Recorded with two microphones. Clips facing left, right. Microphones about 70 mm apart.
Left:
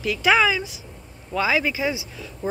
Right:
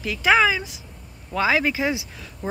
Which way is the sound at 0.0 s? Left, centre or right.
Right.